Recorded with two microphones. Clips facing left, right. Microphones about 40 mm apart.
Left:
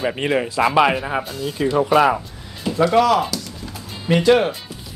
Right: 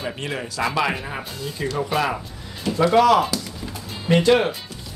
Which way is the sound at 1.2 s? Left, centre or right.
Centre.